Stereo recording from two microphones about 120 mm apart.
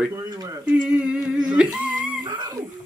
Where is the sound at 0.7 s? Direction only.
10° right (ahead or behind).